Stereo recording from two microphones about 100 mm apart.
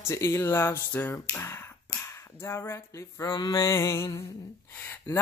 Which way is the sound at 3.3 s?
50° left (ahead or behind).